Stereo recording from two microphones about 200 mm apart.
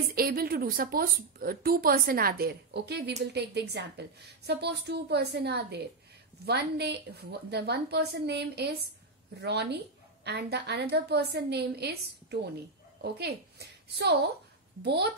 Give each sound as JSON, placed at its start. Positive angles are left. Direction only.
{"t": 0.1, "sound": "a woman's voice", "side_deg": -45}